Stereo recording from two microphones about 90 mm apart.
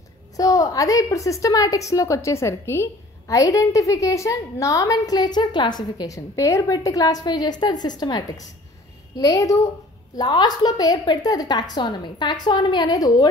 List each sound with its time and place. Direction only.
0.4 s a woman's voice: 40° left (ahead or behind)
10.1 s a woman's voice: 50° left (ahead or behind)